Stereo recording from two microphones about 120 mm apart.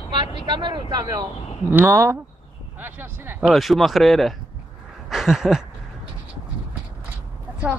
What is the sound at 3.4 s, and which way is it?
Speech, centre (ahead or behind).